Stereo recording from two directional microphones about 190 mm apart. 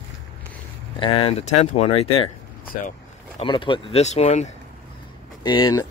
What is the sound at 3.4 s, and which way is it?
Speech, 25° left (ahead or behind).